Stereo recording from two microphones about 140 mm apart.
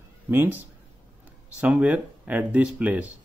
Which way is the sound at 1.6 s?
10° right (ahead or behind).